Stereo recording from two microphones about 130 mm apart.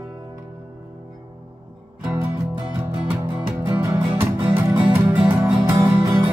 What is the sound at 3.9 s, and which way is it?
Music, 10° right (ahead or behind).